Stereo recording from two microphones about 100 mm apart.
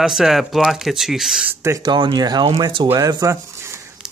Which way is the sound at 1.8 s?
50° right (ahead or behind).